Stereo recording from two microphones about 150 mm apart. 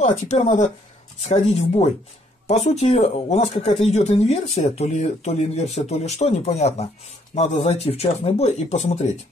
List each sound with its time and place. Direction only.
0.0 s speech: 50° left (ahead or behind)